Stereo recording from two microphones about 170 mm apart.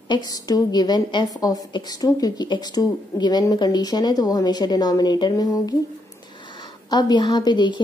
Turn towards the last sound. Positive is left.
turn(degrees=25)  # may be behind; listen again after turning